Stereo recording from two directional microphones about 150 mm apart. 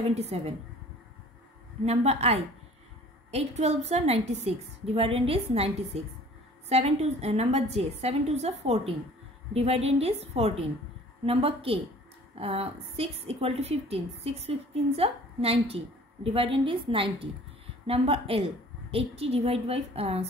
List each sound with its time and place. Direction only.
0.1 s a woman's voice: 45° right (ahead or behind)
1.9 s a woman's voice: 45° right (ahead or behind)